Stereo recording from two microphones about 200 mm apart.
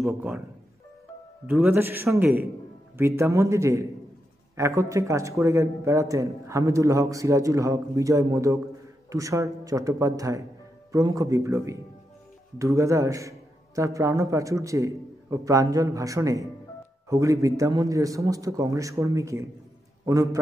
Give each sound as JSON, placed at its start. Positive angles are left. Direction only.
{"t": 0.0, "sound": "speech", "side_deg": -5}
{"t": 1.5, "sound": "speech", "side_deg": -10}